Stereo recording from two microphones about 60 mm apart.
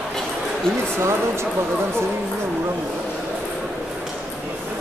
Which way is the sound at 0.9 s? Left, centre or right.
Right.